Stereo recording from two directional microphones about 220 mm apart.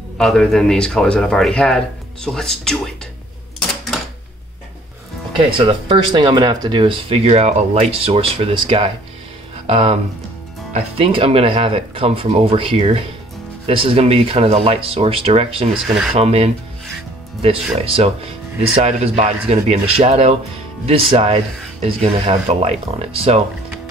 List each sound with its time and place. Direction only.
0.2 s a man's voice: centre (ahead or behind)
5.6 s speech: 25° right (ahead or behind)